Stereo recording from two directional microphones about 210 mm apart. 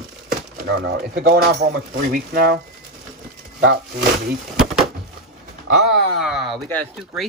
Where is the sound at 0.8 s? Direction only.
50° right (ahead or behind).